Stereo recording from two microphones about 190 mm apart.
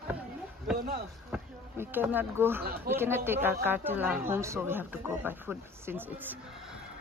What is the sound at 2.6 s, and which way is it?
Speech, 55° right (ahead or behind).